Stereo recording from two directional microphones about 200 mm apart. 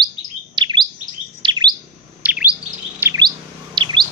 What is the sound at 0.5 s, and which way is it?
Bird, 25° right (ahead or behind).